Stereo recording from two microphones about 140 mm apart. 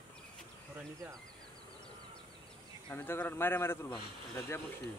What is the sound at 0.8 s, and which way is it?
Speech, 20° right (ahead or behind).